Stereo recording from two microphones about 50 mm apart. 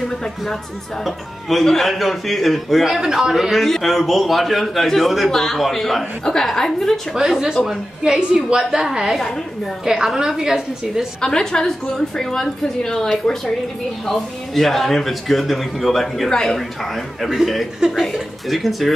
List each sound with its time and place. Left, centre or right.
0.0 s a man's voice: centre
7.2 s a woman's voice: centre
8.7 s a woman's voice: centre
11.1 s a woman's voice: centre
17.8 s a woman's voice: centre
18.1 s a man's voice: centre